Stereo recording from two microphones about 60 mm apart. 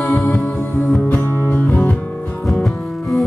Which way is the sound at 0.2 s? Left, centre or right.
Left.